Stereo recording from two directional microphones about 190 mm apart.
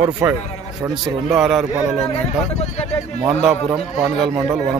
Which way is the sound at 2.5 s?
35° left (ahead or behind).